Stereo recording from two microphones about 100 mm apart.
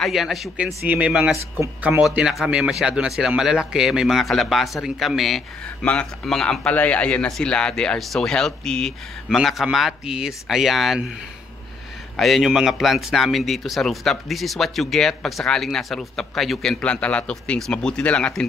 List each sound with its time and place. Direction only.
0.0 s a man's voice: centre (ahead or behind)
0.8 s speech: 15° right (ahead or behind)
2.0 s a man's voice: 5° right (ahead or behind)
12.2 s a man's voice: centre (ahead or behind)